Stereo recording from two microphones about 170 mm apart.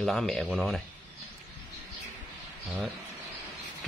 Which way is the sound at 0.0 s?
Centre (ahead or behind).